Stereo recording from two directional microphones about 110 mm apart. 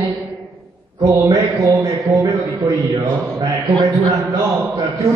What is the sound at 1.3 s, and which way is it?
Speech, 30° right (ahead or behind).